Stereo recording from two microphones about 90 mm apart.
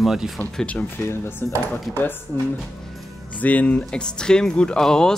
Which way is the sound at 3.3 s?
15° left (ahead or behind).